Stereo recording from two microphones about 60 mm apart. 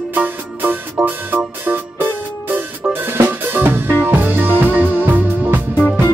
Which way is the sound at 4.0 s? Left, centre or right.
Right.